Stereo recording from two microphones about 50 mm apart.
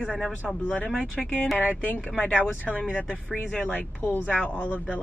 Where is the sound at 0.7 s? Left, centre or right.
Left.